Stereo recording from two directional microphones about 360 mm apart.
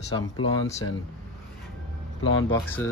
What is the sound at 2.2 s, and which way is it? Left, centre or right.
Speech, left.